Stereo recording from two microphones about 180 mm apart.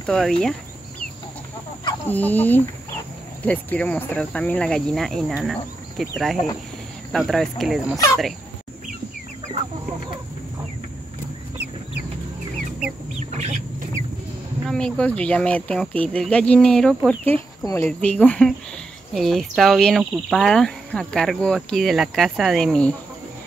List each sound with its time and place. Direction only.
0.0 s speech: 5° left (ahead or behind)
2.0 s speech: 10° left (ahead or behind)
13.3 s chicken: 40° right (ahead or behind)
14.7 s speech: 5° left (ahead or behind)
17.2 s speech: 15° left (ahead or behind)